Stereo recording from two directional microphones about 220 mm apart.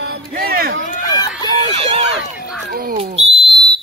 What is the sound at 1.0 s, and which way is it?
Run, 15° left (ahead or behind).